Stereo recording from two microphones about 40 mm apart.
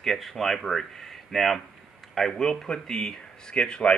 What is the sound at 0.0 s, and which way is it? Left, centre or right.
Speech, centre.